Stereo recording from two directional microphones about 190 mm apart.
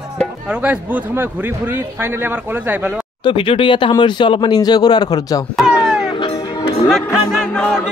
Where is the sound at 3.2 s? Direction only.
25° left (ahead or behind).